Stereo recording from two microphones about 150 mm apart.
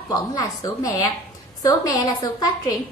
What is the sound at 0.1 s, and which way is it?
A woman's voice, 25° left (ahead or behind).